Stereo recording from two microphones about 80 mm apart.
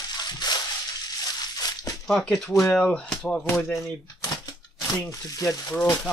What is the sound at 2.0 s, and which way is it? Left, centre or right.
Speech, centre.